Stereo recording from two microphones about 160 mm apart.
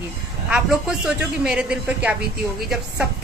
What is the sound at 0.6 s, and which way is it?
A woman's voice, 5° right (ahead or behind).